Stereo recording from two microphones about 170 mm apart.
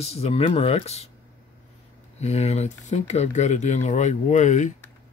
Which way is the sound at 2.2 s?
40° left (ahead or behind).